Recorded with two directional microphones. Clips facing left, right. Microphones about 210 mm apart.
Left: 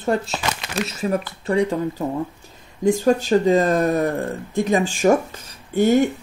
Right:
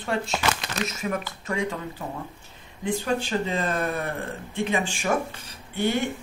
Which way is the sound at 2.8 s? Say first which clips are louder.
Left 9 dB; 45° left (ahead or behind).